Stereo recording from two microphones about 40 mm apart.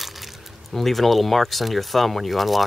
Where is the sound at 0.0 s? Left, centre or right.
Centre.